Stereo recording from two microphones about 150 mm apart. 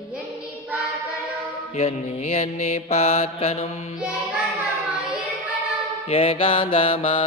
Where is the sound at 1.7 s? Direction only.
45° left (ahead or behind).